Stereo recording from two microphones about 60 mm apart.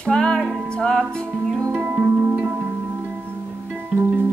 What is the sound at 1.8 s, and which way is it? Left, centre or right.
Music, right.